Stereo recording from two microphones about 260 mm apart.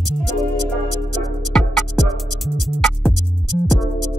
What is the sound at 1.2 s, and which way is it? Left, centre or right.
Music, centre.